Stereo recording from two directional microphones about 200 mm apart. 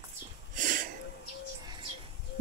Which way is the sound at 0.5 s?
40° right (ahead or behind).